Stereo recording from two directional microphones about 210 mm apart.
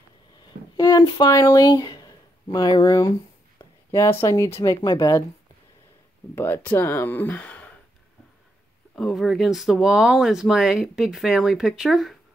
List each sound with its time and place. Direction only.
0.7 s speech: 20° left (ahead or behind)
6.3 s speech: 10° left (ahead or behind)
8.9 s speech: centre (ahead or behind)